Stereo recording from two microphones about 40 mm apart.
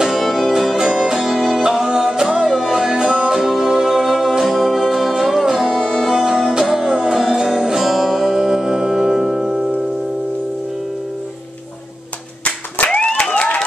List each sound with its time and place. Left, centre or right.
0.0 s music: centre
2.2 s music: centre
12.4 s clapping: left
13.2 s a sound: left